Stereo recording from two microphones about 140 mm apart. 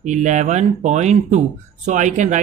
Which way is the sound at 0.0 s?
60° right (ahead or behind).